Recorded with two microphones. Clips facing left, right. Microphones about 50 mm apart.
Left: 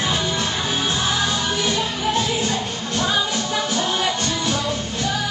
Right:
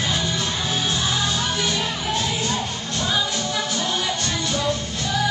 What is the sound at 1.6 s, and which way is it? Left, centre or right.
Music, left.